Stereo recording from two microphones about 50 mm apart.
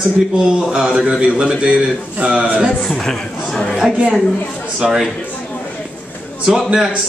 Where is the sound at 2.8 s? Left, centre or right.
Centre.